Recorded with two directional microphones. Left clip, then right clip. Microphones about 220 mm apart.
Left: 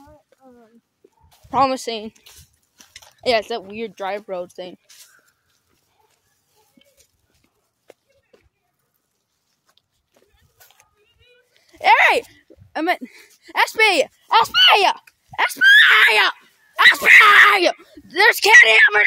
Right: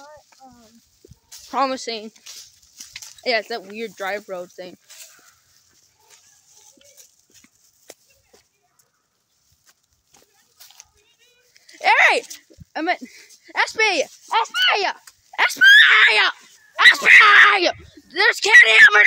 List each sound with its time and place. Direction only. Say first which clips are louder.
1.5 s speech: left 4 dB; 15° left (ahead or behind)
2.8 s a sound: right 8 dB; 5° left (ahead or behind)
3.2 s speech: left 3 dB; 25° left (ahead or behind)
7.0 s horse: right 8 dB; 25° right (ahead or behind)
11.6 s a sound: left 2 dB; 15° left (ahead or behind)
12.7 s speech: left 2 dB; 20° left (ahead or behind)
15.0 s speech: right 1 dB; 10° left (ahead or behind); by 18.8 s 25° left (ahead or behind)